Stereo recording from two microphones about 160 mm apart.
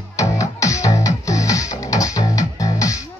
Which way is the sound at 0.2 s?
20° left (ahead or behind).